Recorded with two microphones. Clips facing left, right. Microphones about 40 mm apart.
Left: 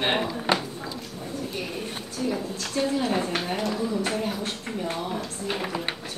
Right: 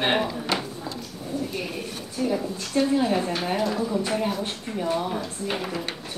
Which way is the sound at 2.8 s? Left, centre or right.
Centre.